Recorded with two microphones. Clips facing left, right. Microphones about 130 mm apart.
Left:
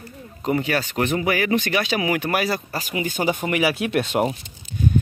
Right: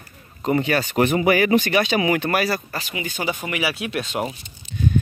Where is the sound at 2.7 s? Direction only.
40° left (ahead or behind).